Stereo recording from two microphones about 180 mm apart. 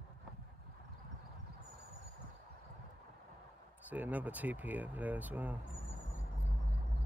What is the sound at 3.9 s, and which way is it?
Speech, 10° right (ahead or behind).